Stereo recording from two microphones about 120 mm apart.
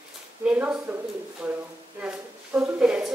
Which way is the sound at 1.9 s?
10° right (ahead or behind).